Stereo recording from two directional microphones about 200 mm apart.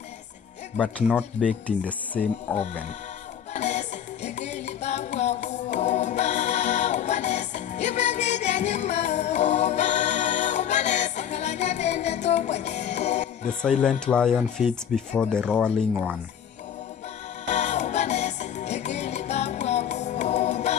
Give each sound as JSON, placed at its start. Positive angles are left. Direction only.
{"t": 1.0, "sound": "speech", "side_deg": -5}
{"t": 1.7, "sound": "speech", "side_deg": 5}
{"t": 2.5, "sound": "speech", "side_deg": -5}
{"t": 3.5, "sound": "music", "side_deg": 35}
{"t": 13.6, "sound": "speech", "side_deg": 5}
{"t": 17.5, "sound": "music", "side_deg": 35}